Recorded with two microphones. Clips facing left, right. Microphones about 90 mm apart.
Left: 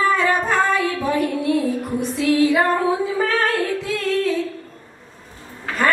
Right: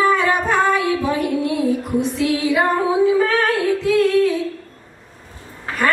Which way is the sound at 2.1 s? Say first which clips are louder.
Left 6 dB; 20° right (ahead or behind).